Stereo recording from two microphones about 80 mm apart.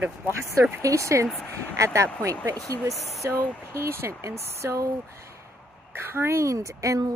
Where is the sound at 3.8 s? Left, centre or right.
Right.